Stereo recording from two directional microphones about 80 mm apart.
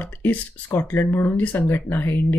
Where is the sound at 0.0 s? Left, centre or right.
Left.